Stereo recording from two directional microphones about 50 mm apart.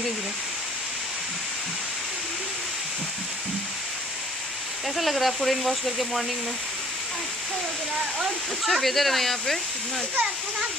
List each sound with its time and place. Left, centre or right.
4.9 s speech: centre
8.6 s speech: centre
10.1 s speech: right